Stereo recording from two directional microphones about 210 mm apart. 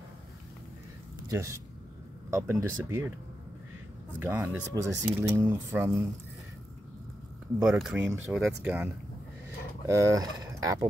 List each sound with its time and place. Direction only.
1.3 s speech: 15° right (ahead or behind)
4.2 s speech: 10° right (ahead or behind)
7.5 s speech: 5° right (ahead or behind)